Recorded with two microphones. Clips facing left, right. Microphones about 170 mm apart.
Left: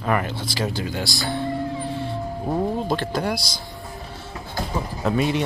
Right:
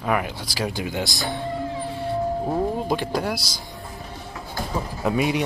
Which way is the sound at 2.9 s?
10° right (ahead or behind).